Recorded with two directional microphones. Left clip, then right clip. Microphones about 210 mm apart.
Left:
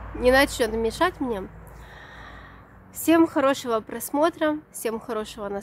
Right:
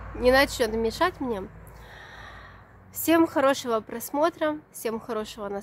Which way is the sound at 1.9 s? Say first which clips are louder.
Even; 10° right (ahead or behind).